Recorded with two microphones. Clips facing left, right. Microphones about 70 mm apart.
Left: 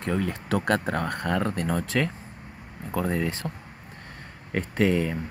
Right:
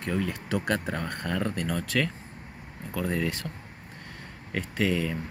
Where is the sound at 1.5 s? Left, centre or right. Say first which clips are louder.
Left 3 dB; left.